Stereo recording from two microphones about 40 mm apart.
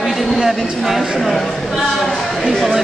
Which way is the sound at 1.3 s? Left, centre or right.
Centre.